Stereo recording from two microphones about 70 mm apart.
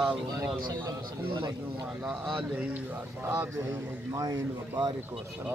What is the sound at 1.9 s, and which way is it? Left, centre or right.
A man's voice, centre.